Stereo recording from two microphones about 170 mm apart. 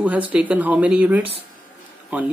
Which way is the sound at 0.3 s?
10° right (ahead or behind).